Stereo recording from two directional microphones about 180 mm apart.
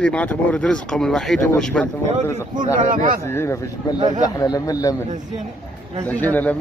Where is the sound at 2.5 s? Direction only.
50° right (ahead or behind).